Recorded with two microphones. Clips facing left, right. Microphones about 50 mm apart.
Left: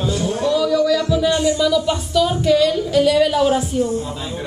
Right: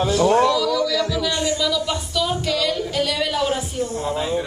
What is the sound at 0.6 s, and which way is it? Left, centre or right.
Speech, left.